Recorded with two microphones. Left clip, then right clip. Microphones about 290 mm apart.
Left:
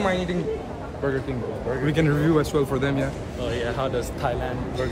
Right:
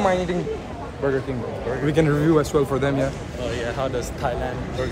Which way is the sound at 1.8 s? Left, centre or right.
Centre.